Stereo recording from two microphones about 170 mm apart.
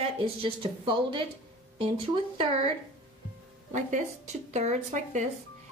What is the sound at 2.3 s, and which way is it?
Speech, 35° right (ahead or behind).